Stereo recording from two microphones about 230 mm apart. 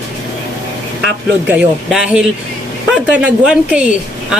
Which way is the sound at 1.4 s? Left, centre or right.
Centre.